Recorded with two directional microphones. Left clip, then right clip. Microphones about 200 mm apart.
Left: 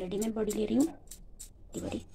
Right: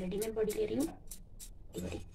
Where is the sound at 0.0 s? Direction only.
35° left (ahead or behind).